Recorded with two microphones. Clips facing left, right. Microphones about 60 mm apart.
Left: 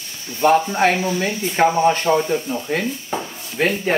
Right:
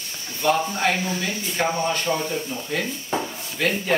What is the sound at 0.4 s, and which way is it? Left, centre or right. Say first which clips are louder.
Speech: left 6 dB; left.